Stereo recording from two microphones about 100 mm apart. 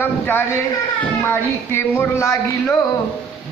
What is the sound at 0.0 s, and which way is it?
Speech, 20° left (ahead or behind).